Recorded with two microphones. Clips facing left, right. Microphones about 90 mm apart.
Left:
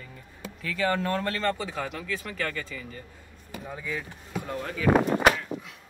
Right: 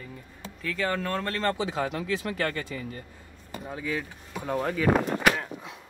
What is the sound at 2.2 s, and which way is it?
Speech, 35° right (ahead or behind).